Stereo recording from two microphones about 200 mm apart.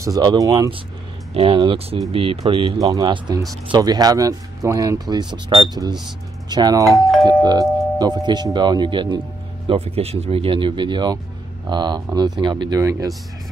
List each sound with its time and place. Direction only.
0.0 s speech: 20° right (ahead or behind)